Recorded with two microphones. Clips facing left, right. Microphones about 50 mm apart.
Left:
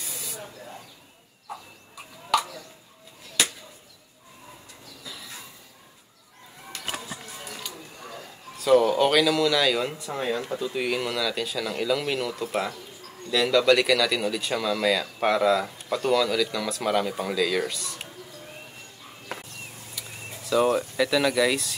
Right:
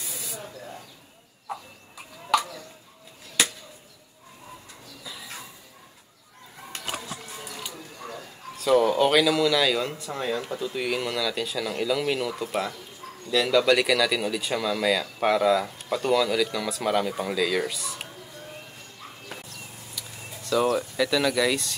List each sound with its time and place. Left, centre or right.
0.0 s spray: centre
8.5 s speech: centre
20.0 s speech: centre